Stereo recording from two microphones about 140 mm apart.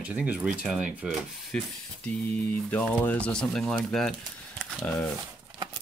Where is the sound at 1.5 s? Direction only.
5° left (ahead or behind).